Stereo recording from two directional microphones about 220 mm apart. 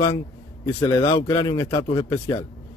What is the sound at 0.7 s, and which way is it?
Speech, 15° left (ahead or behind).